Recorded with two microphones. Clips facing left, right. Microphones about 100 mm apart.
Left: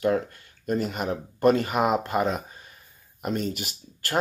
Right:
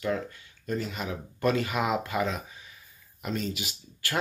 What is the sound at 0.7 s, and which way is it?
Speech, 55° left (ahead or behind).